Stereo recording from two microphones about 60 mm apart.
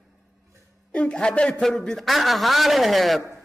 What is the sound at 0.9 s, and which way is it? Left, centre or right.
A woman's voice, centre.